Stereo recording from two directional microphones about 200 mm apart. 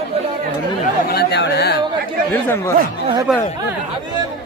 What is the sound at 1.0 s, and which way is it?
Chatter, 55° left (ahead or behind).